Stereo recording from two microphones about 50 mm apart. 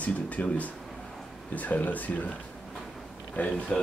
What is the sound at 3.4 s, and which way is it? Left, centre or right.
Speech, left.